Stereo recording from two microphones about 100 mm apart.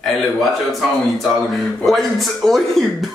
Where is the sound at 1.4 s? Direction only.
Centre (ahead or behind).